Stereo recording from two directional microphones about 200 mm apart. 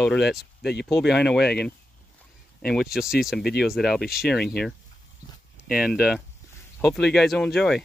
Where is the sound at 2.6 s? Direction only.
Centre (ahead or behind).